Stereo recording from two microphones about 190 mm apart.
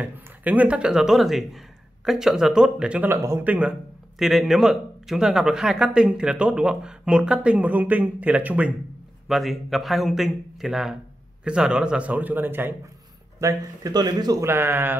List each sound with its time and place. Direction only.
0.0 s speech: 10° right (ahead or behind)